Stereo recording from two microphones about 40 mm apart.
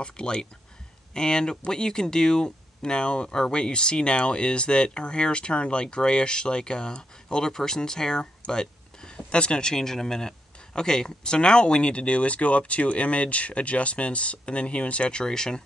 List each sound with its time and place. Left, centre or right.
0.0 s speech: left